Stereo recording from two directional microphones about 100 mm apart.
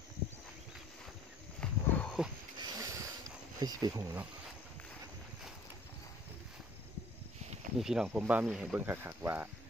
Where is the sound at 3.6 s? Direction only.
40° right (ahead or behind).